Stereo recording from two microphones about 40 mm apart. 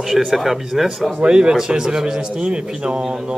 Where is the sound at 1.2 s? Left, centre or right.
Right.